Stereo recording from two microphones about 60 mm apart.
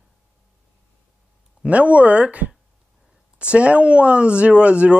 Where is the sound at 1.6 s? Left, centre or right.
Right.